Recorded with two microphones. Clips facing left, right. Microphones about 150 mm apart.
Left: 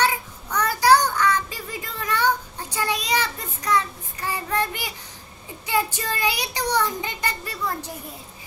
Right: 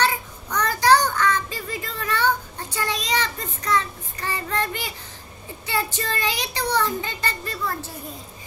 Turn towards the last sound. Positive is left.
turn(degrees=15)  # may be behind; listen again after turning